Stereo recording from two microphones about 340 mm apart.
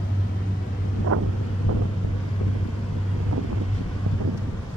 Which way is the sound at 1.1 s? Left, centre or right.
Right.